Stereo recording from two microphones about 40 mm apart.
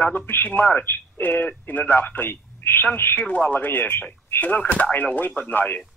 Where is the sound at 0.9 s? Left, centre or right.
Left.